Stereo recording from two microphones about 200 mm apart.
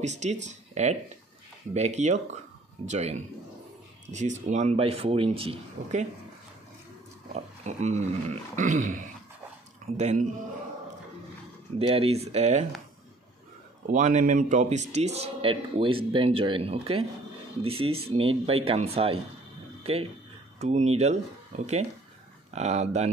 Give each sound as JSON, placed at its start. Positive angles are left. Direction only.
{"t": 0.0, "sound": "speech", "side_deg": -35}
{"t": 7.3, "sound": "a sound", "side_deg": -35}
{"t": 9.9, "sound": "speech", "side_deg": -35}
{"t": 11.8, "sound": "speech", "side_deg": -30}
{"t": 13.8, "sound": "speech", "side_deg": -40}